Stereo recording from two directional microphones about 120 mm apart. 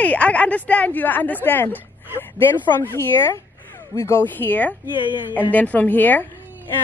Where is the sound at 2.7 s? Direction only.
20° left (ahead or behind).